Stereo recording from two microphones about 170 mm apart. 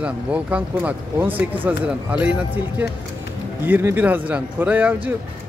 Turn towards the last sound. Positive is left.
turn(degrees=-10)  # may be behind; listen again after turning